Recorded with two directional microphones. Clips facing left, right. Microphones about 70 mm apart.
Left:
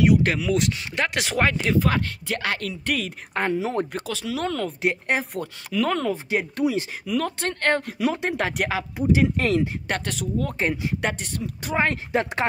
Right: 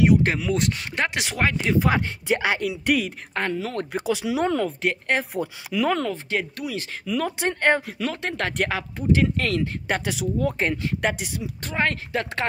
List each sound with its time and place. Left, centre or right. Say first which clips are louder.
0.0 s speech: even; right
1.1 s speech: left 2 dB; centre
3.3 s speech: left 3 dB; centre
3.9 s speech: right 4 dB; centre
4.8 s speech: left 4 dB; centre
5.3 s speech: right 1 dB; centre
6.5 s speech: left 7 dB; left
7.1 s speech: right 3 dB; centre
8.0 s speech: left 3 dB; centre
8.9 s speech: left 1 dB; centre
9.8 s speech: right 2 dB; centre
11.6 s speech: left 2 dB; centre